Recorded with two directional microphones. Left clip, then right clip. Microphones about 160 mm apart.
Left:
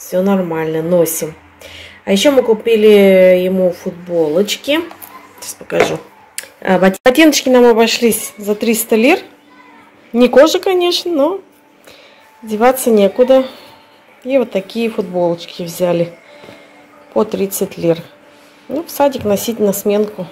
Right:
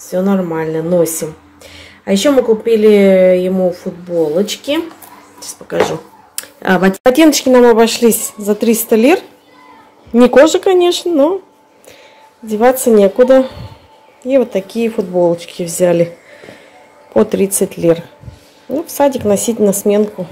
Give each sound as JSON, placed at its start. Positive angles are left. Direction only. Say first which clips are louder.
{"t": 0.0, "sound": "speech", "louder": "left 1 dB", "side_deg": 0}
{"t": 6.3, "sound": "a sound", "louder": "even", "side_deg": -15}
{"t": 7.0, "sound": "speech", "louder": "even", "side_deg": -10}
{"t": 10.3, "sound": "speech", "louder": "even", "side_deg": -20}
{"t": 12.4, "sound": "speech", "louder": "right 1 dB", "side_deg": -15}
{"t": 15.1, "sound": "speech", "louder": "right 5 dB", "side_deg": -30}
{"t": 17.1, "sound": "speech", "louder": "right 3 dB", "side_deg": -30}